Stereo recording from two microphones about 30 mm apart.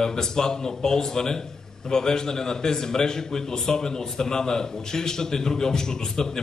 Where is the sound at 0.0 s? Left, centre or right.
Left.